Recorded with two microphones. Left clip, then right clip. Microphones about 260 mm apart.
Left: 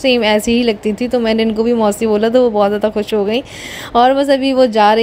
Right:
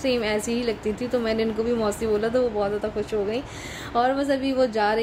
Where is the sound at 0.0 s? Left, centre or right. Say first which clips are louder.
Left 11 dB; left.